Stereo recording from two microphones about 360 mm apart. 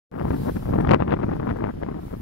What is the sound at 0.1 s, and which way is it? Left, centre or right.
Wind noise, left.